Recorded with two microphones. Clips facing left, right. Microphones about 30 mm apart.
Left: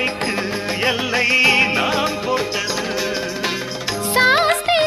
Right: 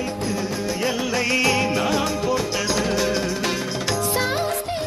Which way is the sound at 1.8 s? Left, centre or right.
Left.